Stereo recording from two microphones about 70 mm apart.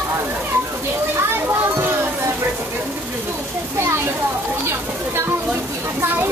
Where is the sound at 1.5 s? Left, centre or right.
Right.